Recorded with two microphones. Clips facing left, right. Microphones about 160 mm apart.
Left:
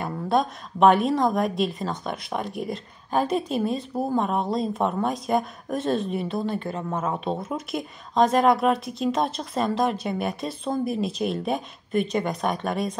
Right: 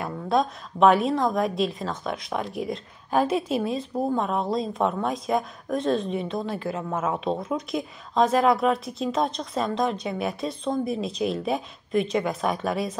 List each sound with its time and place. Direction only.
0.0 s a woman's voice: centre (ahead or behind)